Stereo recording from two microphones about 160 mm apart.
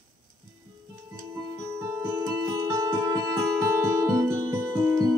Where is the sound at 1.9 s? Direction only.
15° right (ahead or behind).